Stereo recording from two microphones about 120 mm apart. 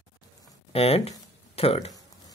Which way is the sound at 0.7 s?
55° left (ahead or behind).